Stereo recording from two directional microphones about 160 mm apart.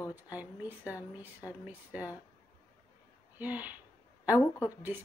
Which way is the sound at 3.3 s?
10° right (ahead or behind).